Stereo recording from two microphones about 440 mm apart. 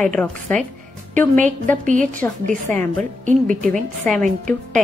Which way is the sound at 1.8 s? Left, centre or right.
Centre.